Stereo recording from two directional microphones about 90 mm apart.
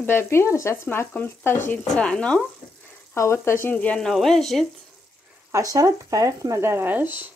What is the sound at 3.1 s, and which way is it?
Speech, 30° left (ahead or behind).